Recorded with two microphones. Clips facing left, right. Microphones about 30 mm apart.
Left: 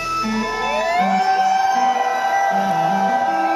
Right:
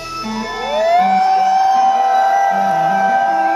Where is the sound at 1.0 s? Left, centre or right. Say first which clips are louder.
Right 2 dB; centre.